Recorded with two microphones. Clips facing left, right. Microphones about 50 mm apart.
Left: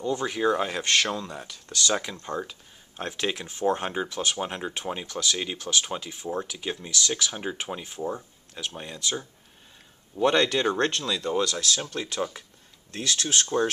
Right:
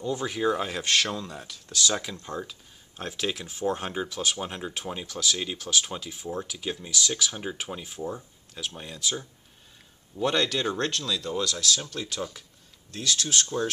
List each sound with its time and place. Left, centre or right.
0.0 s speech: centre
0.3 s speech: centre
6.9 s speech: centre
7.2 s speech: centre